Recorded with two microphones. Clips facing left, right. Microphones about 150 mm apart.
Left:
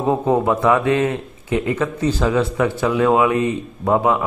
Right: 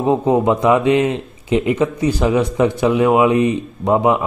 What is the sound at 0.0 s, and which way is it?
A man's voice, 20° right (ahead or behind).